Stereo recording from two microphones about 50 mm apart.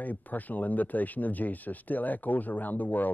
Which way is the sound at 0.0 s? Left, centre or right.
Left.